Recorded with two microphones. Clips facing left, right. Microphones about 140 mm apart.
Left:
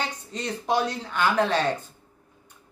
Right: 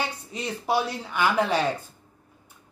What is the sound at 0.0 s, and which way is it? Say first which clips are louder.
Speech: even; 10° right (ahead or behind).